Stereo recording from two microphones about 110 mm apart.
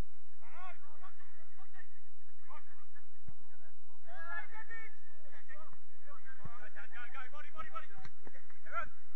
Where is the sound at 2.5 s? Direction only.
5° left (ahead or behind).